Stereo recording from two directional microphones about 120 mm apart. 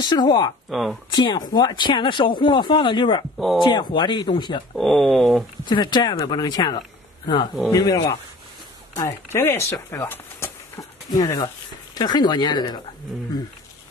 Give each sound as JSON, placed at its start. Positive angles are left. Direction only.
{"t": 0.0, "sound": "speech", "side_deg": 35}
{"t": 0.7, "sound": "speech", "side_deg": 0}
{"t": 1.1, "sound": "speech", "side_deg": 35}
{"t": 4.7, "sound": "speech", "side_deg": 0}
{"t": 5.7, "sound": "speech", "side_deg": 40}
{"t": 10.8, "sound": "speech", "side_deg": 30}